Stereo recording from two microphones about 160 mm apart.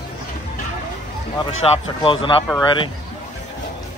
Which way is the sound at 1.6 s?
35° left (ahead or behind).